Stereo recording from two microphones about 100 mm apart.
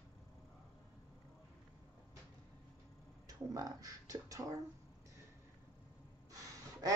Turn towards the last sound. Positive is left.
turn(degrees=-40)  # may be behind; listen again after turning